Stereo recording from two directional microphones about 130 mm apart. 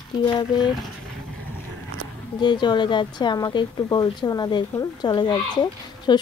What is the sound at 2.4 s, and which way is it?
Speech, 35° left (ahead or behind).